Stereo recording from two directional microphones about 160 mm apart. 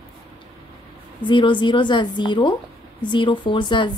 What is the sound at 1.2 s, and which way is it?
A woman's voice, 30° left (ahead or behind).